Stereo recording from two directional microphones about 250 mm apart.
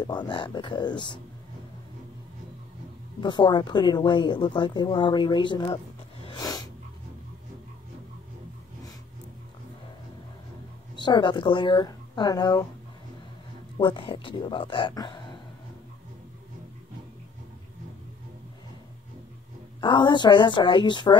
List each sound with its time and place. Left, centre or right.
0.0 s speech: centre
3.2 s speech: centre
6.2 s snort: centre
11.0 s speech: centre
13.7 s speech: centre
19.8 s speech: centre